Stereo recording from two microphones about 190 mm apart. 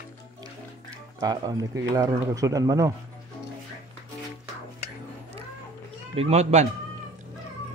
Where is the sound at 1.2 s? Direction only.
20° right (ahead or behind).